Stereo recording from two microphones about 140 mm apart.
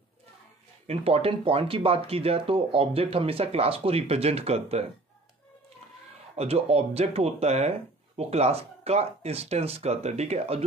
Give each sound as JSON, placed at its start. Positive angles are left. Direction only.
{"t": 0.8, "sound": "speech", "side_deg": -45}
{"t": 6.3, "sound": "speech", "side_deg": -45}